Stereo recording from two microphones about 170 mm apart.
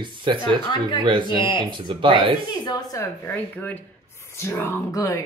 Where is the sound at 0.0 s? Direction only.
30° right (ahead or behind).